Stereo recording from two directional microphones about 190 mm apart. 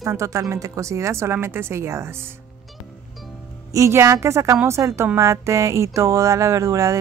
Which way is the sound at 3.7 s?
15° right (ahead or behind).